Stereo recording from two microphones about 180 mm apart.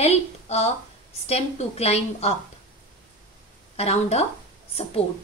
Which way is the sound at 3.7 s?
35° left (ahead or behind).